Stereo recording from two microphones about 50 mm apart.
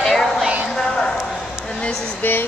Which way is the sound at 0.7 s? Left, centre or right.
Centre.